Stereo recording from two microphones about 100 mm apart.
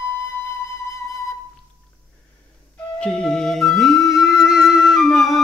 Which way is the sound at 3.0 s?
5° left (ahead or behind).